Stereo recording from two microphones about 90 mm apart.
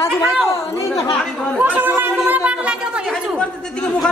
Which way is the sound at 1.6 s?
25° right (ahead or behind).